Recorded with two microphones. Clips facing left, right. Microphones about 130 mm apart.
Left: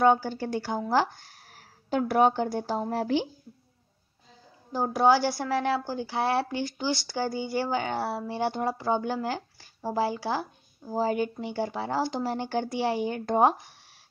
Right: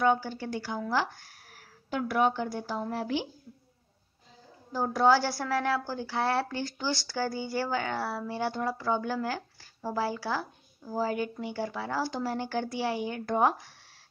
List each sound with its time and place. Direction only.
0.0 s speech: 35° left (ahead or behind)
4.7 s a woman's voice: 15° left (ahead or behind)